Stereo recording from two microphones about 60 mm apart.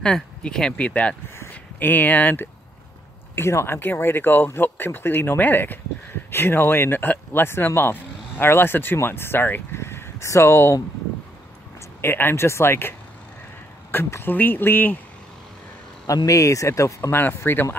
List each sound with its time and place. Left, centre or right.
0.0 s speech: centre
1.5 s speech: left
3.3 s speech: left
3.8 s speech: left
12.0 s speech: left
13.9 s speech: left
16.1 s speech: left
17.1 s speech: left